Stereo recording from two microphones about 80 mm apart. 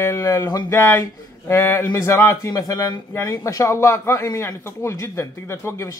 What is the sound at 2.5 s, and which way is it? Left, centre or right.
Speech, left.